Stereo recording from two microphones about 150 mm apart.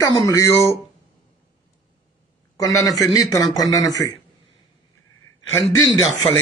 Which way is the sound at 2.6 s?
25° left (ahead or behind).